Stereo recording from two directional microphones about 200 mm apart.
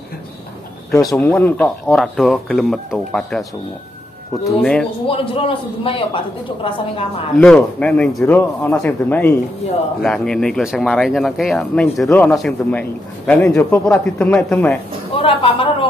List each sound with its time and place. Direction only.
1.1 s speech: 5° left (ahead or behind)
4.5 s speech: centre (ahead or behind)
5.0 s a man's voice: 25° left (ahead or behind)
7.3 s speech: 5° left (ahead or behind)
15.1 s a man's voice: 30° left (ahead or behind)